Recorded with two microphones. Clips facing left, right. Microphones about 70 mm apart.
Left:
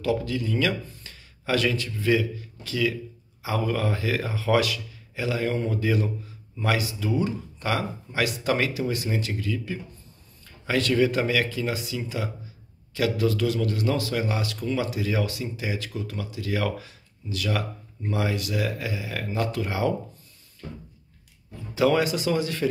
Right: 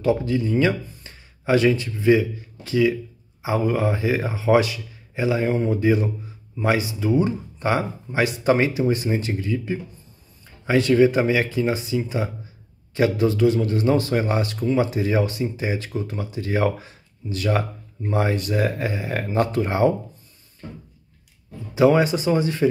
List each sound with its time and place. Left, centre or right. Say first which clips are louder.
0.0 s speech: right 5 dB; right
21.7 s speech: right 5 dB; right